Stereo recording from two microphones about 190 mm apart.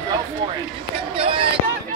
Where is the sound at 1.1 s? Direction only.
30° right (ahead or behind).